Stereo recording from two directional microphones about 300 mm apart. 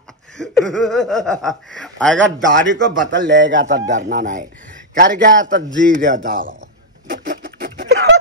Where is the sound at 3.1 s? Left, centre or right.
Right.